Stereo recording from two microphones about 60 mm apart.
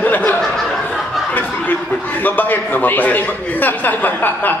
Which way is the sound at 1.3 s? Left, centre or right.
Left.